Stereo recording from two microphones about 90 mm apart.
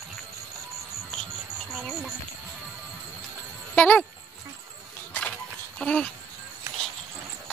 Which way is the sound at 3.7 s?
20° left (ahead or behind).